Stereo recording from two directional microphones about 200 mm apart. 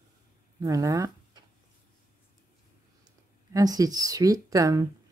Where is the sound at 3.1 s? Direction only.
20° right (ahead or behind).